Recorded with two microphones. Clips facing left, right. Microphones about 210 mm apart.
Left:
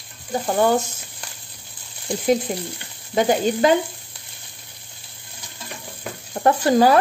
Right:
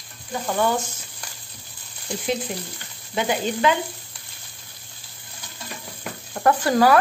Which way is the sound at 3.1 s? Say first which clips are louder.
Left 5 dB; 40° left (ahead or behind).